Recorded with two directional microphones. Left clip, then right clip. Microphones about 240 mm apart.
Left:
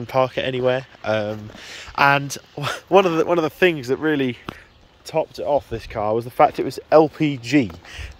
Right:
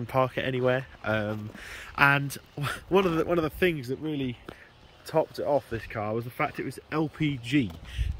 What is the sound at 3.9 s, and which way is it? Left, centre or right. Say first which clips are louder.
Speech: left 12 dB; left.